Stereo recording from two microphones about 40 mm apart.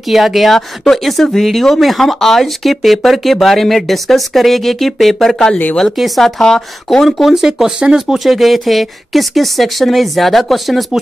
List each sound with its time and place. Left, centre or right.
0.1 s speech: centre
7.2 s speech: centre
8.2 s speech: centre